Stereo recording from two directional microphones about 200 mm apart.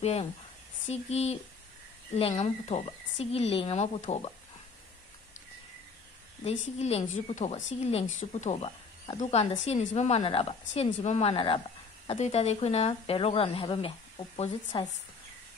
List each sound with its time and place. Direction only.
0.0 s speech: 30° left (ahead or behind)
6.8 s speech: 30° left (ahead or behind)